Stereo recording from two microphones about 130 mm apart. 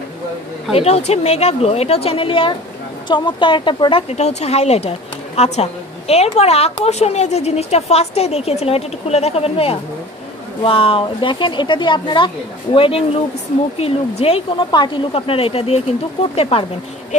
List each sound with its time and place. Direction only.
0.7 s speech: 50° left (ahead or behind)
4.1 s speech: 60° left (ahead or behind)
14.6 s speech: 35° left (ahead or behind)